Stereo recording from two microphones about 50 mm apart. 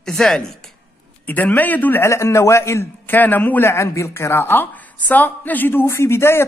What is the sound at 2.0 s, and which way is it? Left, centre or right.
Speech, left.